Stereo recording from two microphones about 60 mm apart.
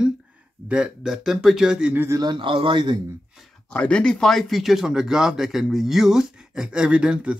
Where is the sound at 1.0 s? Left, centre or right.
Centre.